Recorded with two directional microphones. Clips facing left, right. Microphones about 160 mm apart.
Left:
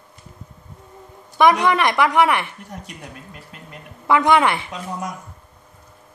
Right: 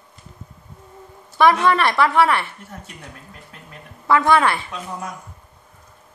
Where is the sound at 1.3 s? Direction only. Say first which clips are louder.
Even; 15° left (ahead or behind).